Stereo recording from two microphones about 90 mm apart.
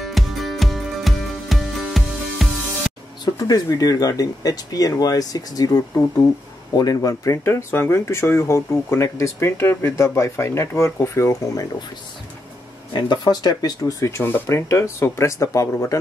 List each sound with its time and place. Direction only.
0.0 s music: centre (ahead or behind)
3.3 s speech: 40° left (ahead or behind)
7.4 s speech: 25° left (ahead or behind)
12.9 s speech: 50° left (ahead or behind); by 16.0 s 35° left (ahead or behind)